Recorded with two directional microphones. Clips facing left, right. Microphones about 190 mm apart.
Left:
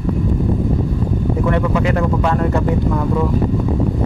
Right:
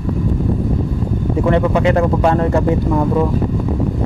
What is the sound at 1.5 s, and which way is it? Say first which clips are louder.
Speech: right 5 dB; 30° right (ahead or behind).